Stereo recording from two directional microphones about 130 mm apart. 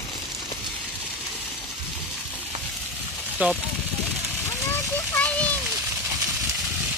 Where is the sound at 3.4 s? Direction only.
10° right (ahead or behind).